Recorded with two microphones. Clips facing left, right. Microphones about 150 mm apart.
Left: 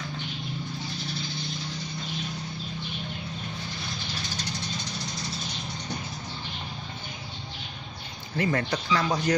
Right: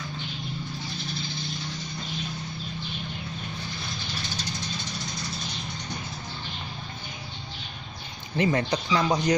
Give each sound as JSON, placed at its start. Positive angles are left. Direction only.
{"t": 8.4, "sound": "speech", "side_deg": -20}